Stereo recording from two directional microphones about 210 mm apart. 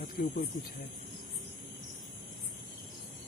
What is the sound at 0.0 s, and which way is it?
Speech, 45° left (ahead or behind).